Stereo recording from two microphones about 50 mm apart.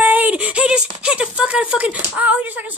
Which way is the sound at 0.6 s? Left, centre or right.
Centre.